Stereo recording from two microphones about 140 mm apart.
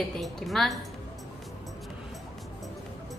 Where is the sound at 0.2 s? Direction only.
Centre (ahead or behind).